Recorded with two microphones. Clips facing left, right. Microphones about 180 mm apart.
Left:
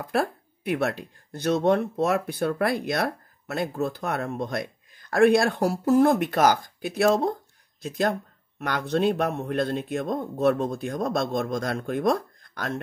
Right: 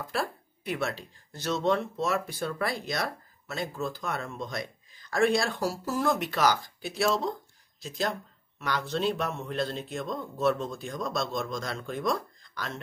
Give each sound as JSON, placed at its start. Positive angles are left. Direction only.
{"t": 0.0, "sound": "speech", "side_deg": 55}